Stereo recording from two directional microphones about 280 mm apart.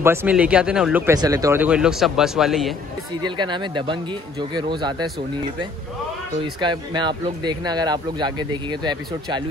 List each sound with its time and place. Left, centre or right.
0.0 s speech: centre
3.2 s speech: centre
6.4 s speech: centre